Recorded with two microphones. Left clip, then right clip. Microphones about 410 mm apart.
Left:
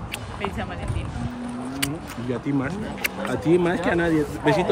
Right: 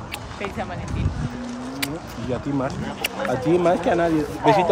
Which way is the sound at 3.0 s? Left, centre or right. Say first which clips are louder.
Right 3 dB; centre.